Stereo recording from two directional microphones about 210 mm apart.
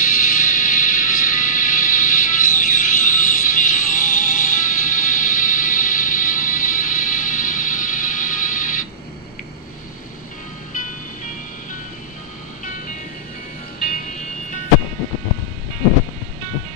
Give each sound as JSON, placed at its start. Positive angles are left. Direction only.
{"t": 0.0, "sound": "music", "side_deg": 40}